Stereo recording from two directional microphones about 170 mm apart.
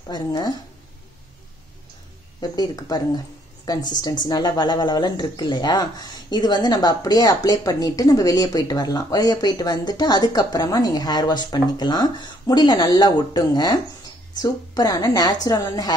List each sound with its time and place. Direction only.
0.1 s speech: 25° left (ahead or behind)
2.5 s a woman's voice: 25° left (ahead or behind)